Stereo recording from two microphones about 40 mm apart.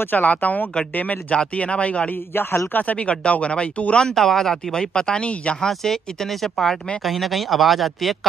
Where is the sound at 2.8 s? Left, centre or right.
Left.